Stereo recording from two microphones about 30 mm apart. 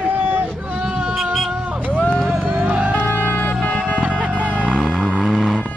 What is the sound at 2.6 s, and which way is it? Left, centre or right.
Music, right.